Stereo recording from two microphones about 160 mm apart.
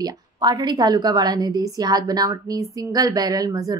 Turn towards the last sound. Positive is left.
turn(degrees=-20)  # may be behind; listen again after turning